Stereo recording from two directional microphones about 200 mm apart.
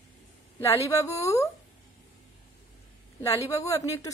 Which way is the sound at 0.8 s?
15° left (ahead or behind).